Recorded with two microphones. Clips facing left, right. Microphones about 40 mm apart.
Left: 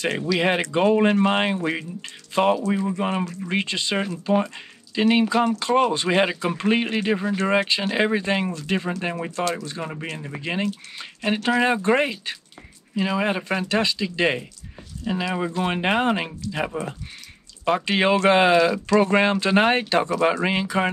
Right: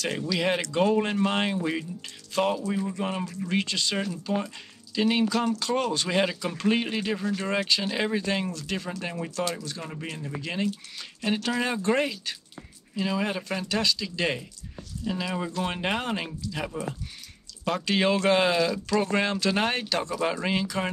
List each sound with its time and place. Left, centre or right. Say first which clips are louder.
0.0 s speech: left 5 dB; centre